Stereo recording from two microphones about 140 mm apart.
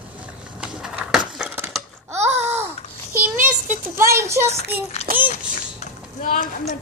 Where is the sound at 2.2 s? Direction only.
50° right (ahead or behind).